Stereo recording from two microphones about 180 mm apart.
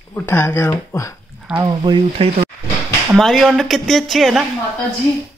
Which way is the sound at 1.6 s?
25° right (ahead or behind).